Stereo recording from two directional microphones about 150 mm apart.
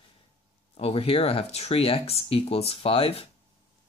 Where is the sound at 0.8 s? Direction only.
40° left (ahead or behind).